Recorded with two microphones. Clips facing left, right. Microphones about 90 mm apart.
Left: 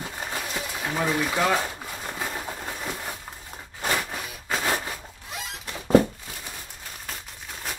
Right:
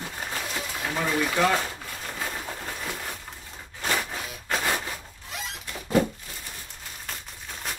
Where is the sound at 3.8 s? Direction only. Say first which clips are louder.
Left 1 dB; 5° left (ahead or behind).